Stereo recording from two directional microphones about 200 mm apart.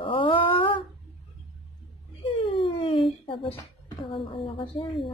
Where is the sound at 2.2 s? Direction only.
30° left (ahead or behind).